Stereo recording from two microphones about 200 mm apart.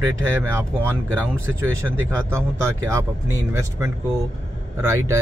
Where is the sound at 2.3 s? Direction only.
15° right (ahead or behind).